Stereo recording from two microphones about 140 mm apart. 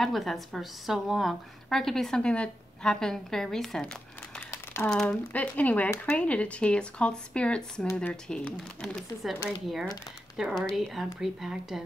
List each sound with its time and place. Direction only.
0.0 s a woman's voice: centre (ahead or behind); by 8.1 s 15° left (ahead or behind)
8.1 s a woman's voice: 5° left (ahead or behind)